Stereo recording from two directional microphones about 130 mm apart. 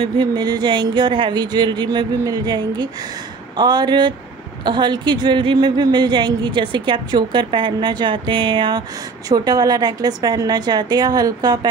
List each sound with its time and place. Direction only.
0.0 s a woman's voice: 35° right (ahead or behind)